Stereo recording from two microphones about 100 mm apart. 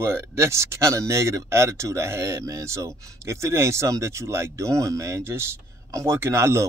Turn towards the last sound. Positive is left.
turn(degrees=-30)  # may be behind; listen again after turning